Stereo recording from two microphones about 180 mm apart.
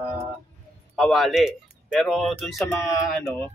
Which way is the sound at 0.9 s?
Centre (ahead or behind).